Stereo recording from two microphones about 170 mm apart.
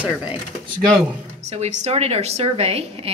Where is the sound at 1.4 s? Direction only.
40° right (ahead or behind).